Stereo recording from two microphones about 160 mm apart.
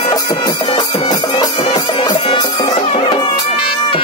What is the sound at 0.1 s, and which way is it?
Music, 25° left (ahead or behind).